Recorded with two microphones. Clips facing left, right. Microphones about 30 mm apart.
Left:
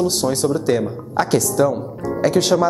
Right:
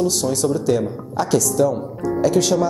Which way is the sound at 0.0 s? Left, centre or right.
Left.